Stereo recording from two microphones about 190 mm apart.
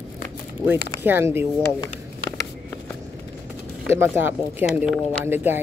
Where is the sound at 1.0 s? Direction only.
10° right (ahead or behind).